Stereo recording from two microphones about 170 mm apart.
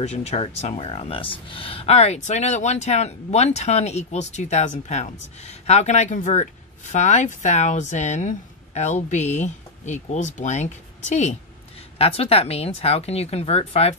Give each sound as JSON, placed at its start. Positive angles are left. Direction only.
{"t": 0.0, "sound": "speech", "side_deg": 40}